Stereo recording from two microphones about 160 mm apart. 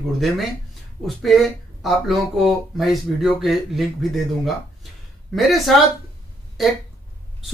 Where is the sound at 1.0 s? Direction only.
Centre (ahead or behind).